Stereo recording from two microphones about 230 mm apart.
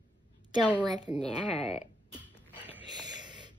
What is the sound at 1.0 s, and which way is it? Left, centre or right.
Speech, centre.